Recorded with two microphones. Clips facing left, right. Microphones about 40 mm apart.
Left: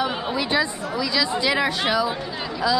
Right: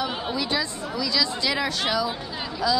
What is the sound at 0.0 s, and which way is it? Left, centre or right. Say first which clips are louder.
A woman's voice: left 3 dB; centre.